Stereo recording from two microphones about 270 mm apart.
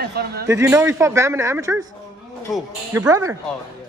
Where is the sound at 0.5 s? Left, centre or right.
Centre.